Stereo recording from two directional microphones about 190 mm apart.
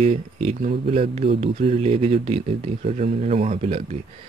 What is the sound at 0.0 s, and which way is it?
Speech, 35° right (ahead or behind).